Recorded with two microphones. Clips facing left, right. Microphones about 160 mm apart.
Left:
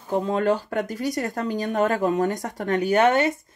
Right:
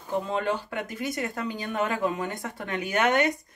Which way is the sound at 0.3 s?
40° left (ahead or behind).